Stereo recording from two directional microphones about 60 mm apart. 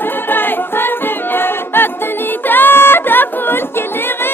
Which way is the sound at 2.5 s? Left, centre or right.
Left.